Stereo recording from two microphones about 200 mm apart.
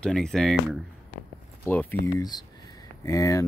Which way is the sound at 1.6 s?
10° left (ahead or behind).